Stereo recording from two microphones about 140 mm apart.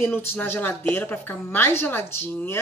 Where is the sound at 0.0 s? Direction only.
15° left (ahead or behind).